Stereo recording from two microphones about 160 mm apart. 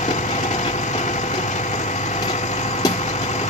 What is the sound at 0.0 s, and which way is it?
Vehicle, 45° left (ahead or behind).